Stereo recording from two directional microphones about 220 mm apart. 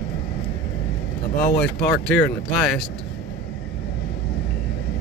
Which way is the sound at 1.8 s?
45° left (ahead or behind).